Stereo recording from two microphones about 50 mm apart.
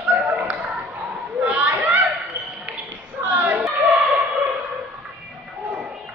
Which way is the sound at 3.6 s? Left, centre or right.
Centre.